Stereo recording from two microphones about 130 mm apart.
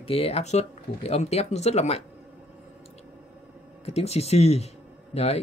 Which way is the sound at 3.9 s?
55° left (ahead or behind).